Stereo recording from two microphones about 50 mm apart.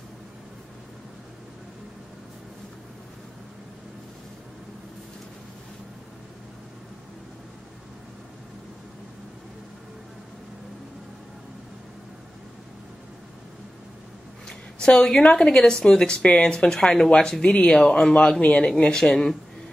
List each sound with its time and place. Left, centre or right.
14.5 s a woman's voice: centre
18.4 s a woman's voice: left